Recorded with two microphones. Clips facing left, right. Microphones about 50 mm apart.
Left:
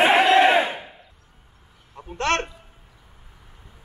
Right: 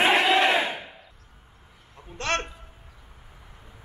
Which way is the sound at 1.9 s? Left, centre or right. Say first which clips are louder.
Left 6 dB; centre.